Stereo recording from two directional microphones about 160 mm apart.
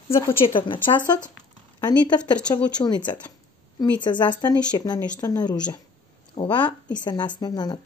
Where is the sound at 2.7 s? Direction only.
25° left (ahead or behind).